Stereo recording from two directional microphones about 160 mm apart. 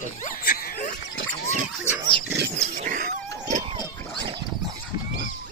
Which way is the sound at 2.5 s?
45° right (ahead or behind).